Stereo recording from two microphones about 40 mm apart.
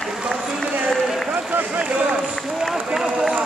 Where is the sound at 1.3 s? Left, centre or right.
Right.